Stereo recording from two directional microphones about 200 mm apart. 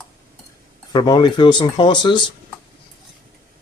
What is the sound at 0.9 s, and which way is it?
Speech, 20° left (ahead or behind).